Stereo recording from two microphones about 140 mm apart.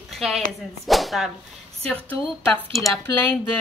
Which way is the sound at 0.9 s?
Centre (ahead or behind).